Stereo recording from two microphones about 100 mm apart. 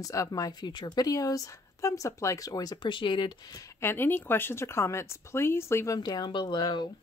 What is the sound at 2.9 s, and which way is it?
Speech, 55° left (ahead or behind).